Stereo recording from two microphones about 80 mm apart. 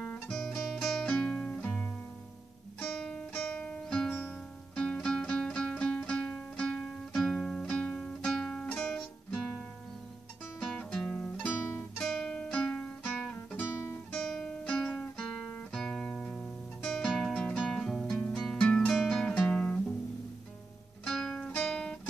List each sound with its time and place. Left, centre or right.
0.3 s music: centre
10.6 s music: centre
11.4 s guitar: left
12.0 s music: centre
14.1 s guitar: centre
15.7 s music: centre
21.0 s music: centre
21.5 s guitar: centre